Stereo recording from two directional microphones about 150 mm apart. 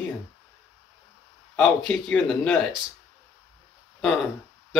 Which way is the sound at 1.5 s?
5° left (ahead or behind).